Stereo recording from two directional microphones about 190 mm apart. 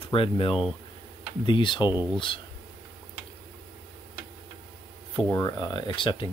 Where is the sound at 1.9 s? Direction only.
10° right (ahead or behind).